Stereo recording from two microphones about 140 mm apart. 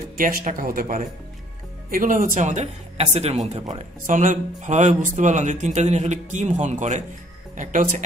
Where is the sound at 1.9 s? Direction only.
75° right (ahead or behind).